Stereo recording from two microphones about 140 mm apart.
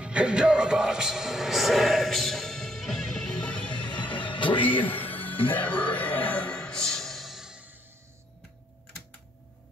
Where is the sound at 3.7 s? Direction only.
35° left (ahead or behind).